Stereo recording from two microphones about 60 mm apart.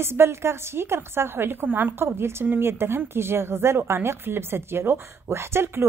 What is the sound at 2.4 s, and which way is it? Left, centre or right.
Speech, right.